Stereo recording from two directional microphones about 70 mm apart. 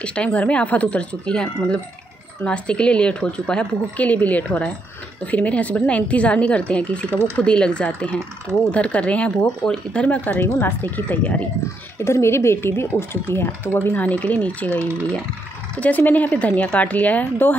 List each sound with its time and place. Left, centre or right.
0.0 s a woman's voice: centre
12.0 s speech: left